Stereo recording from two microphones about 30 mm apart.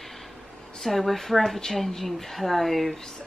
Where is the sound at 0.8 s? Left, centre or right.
Centre.